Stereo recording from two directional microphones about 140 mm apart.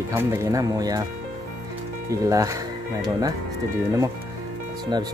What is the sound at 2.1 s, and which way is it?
Speech, 25° right (ahead or behind).